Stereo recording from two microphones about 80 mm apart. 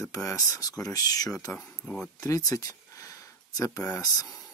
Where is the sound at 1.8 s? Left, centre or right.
Centre.